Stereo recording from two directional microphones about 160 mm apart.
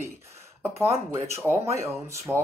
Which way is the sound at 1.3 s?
15° right (ahead or behind).